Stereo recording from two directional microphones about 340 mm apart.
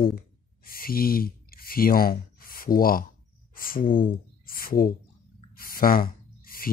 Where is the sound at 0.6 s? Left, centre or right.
Left.